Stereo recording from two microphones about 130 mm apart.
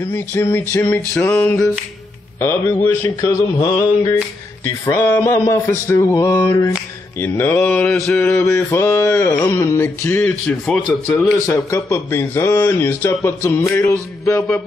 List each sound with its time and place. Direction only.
0.0 s speech: 15° left (ahead or behind)
1.1 s mantra: 15° left (ahead or behind)
2.4 s speech: 20° left (ahead or behind)
7.2 s mantra: 15° left (ahead or behind)
11.4 s speech: 20° left (ahead or behind)